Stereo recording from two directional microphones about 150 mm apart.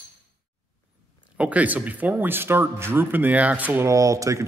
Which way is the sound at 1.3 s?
10° right (ahead or behind).